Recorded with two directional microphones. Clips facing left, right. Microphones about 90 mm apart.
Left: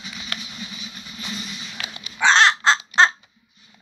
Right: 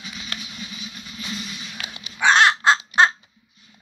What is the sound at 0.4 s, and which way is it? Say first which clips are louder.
Vehicle: even; 25° left (ahead or behind).